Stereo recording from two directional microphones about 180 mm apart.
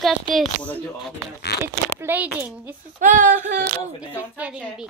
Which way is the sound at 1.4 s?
65° left (ahead or behind).